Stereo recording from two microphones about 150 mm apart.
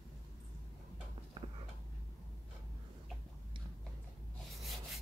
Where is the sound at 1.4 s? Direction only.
35° right (ahead or behind).